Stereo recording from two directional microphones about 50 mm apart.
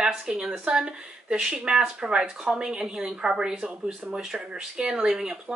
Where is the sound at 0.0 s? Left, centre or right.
Centre.